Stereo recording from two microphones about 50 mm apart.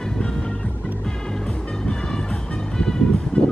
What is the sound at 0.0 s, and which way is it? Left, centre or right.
Music, centre.